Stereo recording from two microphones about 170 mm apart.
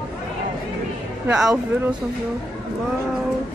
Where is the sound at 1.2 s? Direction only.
5° right (ahead or behind).